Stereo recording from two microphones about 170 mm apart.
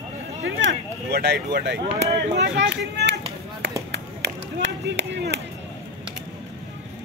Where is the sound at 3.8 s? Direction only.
90° right.